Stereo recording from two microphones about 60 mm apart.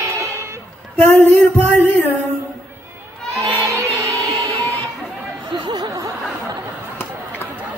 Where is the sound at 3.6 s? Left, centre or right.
Right.